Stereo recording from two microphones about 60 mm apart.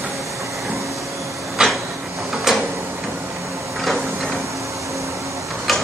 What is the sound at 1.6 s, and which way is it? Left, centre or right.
Train, centre.